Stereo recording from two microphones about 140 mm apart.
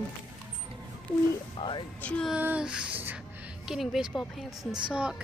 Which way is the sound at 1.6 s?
35° left (ahead or behind).